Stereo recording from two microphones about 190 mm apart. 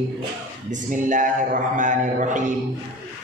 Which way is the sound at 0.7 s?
45° right (ahead or behind).